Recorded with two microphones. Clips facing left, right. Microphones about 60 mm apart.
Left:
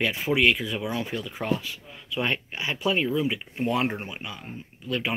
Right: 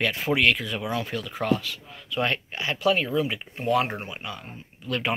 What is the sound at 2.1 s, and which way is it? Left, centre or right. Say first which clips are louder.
Speech: right 1 dB; centre.